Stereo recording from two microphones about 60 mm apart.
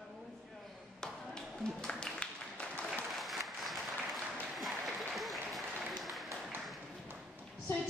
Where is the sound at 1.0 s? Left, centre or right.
Centre.